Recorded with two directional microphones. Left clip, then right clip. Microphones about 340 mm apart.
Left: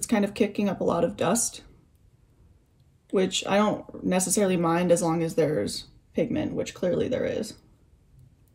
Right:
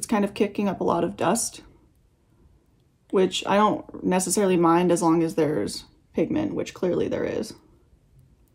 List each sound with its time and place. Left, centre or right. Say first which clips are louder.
0.0 s speech: right 1 dB; centre
3.1 s speech: right 3 dB; centre